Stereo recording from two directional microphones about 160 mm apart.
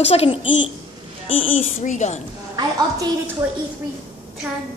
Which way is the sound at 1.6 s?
50° left (ahead or behind).